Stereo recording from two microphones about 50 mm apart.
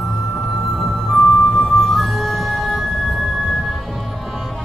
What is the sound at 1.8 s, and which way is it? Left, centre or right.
Music, centre.